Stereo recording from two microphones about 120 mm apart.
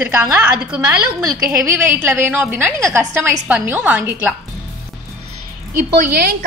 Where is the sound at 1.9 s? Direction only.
15° right (ahead or behind).